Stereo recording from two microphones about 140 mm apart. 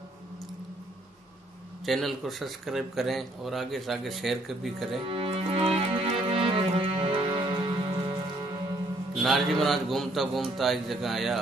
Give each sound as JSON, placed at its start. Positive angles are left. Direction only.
{"t": 1.9, "sound": "speech", "side_deg": 0}
{"t": 5.0, "sound": "music", "side_deg": -40}
{"t": 9.1, "sound": "speech", "side_deg": 0}